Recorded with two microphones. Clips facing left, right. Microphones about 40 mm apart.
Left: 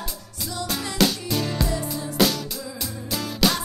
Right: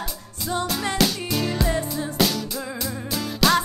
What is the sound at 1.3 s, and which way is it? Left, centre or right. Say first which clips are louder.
Music: right 2 dB; centre.